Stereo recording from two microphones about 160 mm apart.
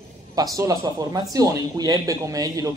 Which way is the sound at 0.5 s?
20° right (ahead or behind).